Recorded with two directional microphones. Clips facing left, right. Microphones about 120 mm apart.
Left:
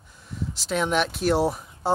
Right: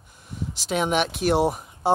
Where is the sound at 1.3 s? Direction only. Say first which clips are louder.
Right 1 dB; 60° right (ahead or behind).